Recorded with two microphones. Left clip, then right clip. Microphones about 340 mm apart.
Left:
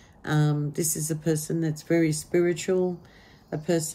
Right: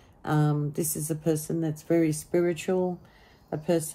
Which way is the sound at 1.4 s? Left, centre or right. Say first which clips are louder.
Left 1 dB; centre.